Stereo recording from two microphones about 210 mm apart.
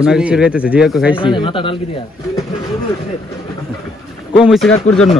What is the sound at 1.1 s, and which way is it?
Speech, 25° left (ahead or behind).